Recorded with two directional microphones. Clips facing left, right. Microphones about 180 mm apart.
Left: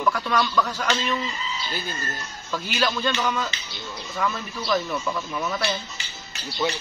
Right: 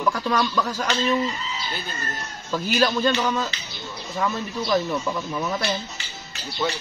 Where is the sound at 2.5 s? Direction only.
35° right (ahead or behind).